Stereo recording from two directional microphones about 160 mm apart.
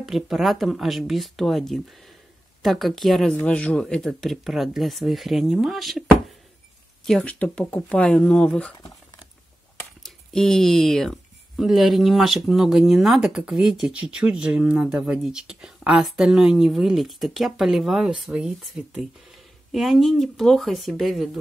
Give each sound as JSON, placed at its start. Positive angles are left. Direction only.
{"t": 0.0, "sound": "speech", "side_deg": 0}
{"t": 7.1, "sound": "speech", "side_deg": 5}
{"t": 10.0, "sound": "speech", "side_deg": 5}